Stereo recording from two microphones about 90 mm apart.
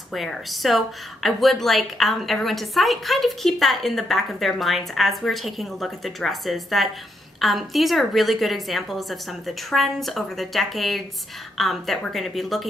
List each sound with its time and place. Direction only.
0.1 s speech: centre (ahead or behind)